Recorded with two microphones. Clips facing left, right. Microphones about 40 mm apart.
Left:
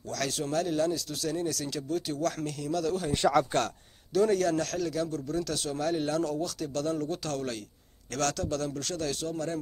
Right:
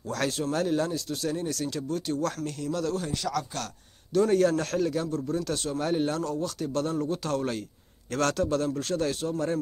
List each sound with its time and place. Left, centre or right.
0.3 s speech: centre
3.2 s speech: left
4.3 s a man's voice: centre